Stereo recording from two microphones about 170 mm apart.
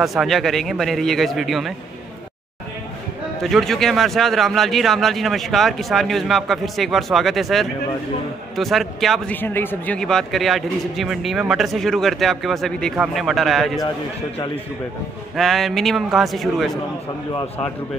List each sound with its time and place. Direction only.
0.0 s a man's voice: centre (ahead or behind)
3.4 s a man's voice: centre (ahead or behind)
15.3 s a man's voice: centre (ahead or behind)
17.3 s a man's voice: 20° left (ahead or behind)